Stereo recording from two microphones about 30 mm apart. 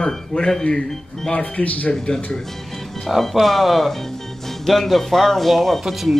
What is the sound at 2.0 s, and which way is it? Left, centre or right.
Speech, left.